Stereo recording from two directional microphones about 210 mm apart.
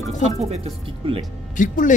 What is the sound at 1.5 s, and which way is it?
Speech, 40° left (ahead or behind).